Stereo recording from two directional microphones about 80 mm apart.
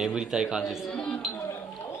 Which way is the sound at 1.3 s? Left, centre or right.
Left.